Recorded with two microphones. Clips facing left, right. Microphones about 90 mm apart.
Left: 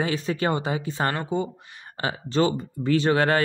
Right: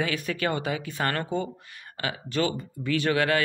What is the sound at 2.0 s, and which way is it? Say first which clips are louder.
A man's voice: left 4 dB; 30° left (ahead or behind).